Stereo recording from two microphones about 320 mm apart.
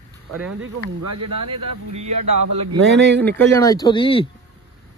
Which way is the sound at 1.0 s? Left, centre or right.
Right.